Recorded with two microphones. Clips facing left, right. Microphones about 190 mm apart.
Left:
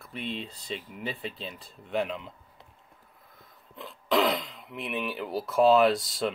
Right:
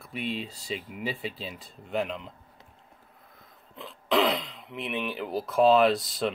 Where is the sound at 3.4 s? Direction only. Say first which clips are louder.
Even; centre (ahead or behind).